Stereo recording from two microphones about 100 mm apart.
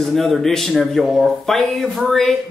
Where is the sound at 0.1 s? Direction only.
Centre (ahead or behind).